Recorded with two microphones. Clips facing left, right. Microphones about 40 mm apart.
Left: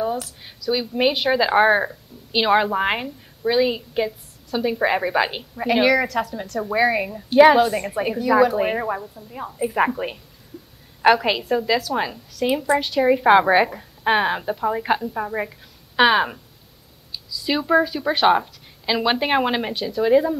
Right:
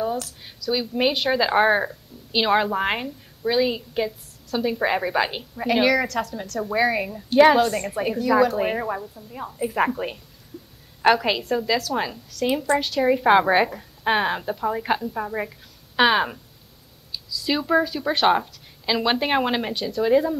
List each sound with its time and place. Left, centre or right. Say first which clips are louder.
0.0 s a woman's voice: left 1 dB; centre